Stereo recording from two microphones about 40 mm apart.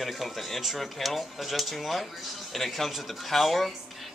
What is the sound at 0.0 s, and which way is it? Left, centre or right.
Speech, centre.